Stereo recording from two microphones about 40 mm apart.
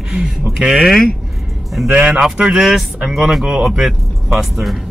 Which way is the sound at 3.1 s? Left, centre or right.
Centre.